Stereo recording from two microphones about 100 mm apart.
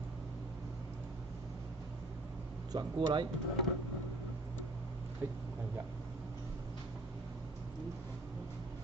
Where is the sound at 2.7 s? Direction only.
50° right (ahead or behind).